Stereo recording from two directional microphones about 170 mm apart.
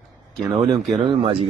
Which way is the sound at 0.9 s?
45° right (ahead or behind).